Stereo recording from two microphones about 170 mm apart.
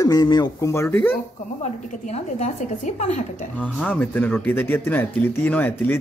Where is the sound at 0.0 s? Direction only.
20° left (ahead or behind).